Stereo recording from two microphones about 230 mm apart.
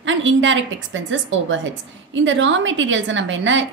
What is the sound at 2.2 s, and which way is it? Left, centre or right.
A woman's voice, right.